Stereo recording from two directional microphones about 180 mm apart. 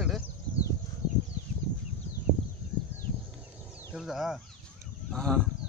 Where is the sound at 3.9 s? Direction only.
Centre (ahead or behind).